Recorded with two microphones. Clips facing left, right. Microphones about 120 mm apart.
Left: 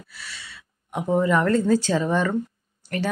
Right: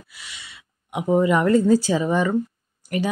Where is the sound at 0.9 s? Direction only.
10° right (ahead or behind).